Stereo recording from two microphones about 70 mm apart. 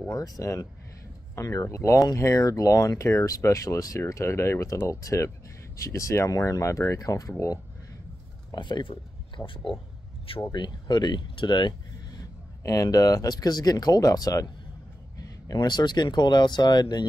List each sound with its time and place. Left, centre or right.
0.1 s speech: left
2.3 s speech: left
4.1 s speech: left
8.5 s speech: left
9.4 s speech: left
10.5 s speech: left
12.2 s speech: left